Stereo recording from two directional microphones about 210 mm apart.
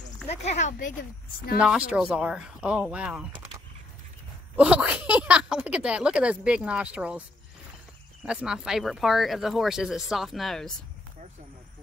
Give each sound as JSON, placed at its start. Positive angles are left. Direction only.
{"t": 0.3, "sound": "a sound", "side_deg": 35}
{"t": 1.9, "sound": "speech", "side_deg": -5}
{"t": 4.6, "sound": "speech", "side_deg": -5}
{"t": 8.3, "sound": "speech", "side_deg": -5}